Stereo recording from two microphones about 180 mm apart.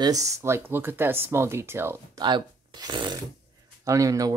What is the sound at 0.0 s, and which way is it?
Speech, 20° right (ahead or behind).